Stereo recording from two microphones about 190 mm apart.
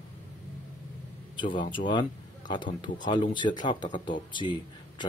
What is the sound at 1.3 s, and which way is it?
Speech, 25° left (ahead or behind).